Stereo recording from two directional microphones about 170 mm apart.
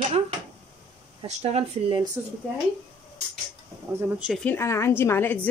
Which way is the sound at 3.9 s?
10° right (ahead or behind).